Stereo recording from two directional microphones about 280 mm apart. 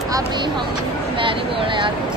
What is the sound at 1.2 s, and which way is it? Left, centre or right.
Speech, centre.